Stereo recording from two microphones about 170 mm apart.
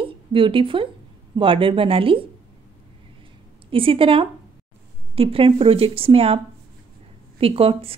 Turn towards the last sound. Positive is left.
turn(degrees=-35)  # may be behind; listen again after turning